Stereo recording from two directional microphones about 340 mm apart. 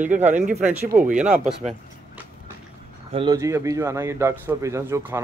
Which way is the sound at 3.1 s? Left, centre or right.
Centre.